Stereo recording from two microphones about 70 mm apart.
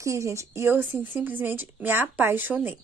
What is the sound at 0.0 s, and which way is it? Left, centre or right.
Speech, right.